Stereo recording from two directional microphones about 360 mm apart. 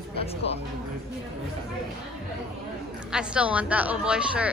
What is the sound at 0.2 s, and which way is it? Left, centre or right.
Speech, centre.